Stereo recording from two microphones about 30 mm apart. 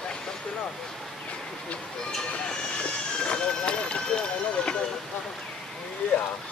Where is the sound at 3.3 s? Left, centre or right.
Left.